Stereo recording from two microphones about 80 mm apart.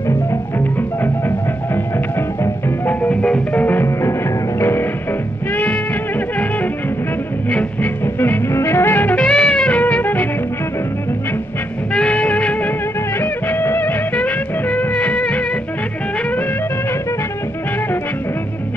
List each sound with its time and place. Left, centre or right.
2.9 s music: centre
3.6 s music: left
7.5 s music: left
9.2 s music: centre
11.9 s music: centre
13.2 s music: left